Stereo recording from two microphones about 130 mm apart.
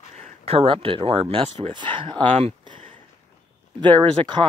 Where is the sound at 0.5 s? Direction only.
45° right (ahead or behind).